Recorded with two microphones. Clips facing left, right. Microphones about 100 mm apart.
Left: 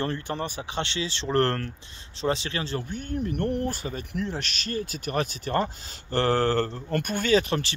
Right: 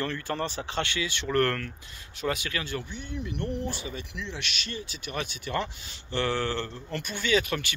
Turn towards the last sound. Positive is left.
turn(degrees=35)  # may be behind; listen again after turning